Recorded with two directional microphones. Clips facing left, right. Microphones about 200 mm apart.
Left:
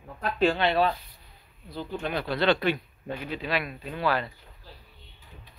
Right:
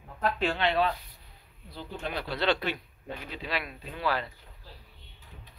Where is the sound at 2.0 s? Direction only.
55° left (ahead or behind).